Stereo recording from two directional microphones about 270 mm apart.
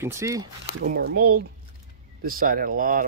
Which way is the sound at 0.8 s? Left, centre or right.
Right.